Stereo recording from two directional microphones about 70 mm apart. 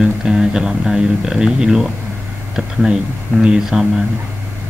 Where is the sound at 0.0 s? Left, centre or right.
Centre.